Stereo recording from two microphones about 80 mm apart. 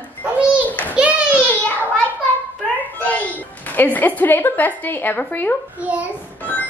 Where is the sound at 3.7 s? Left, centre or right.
Left.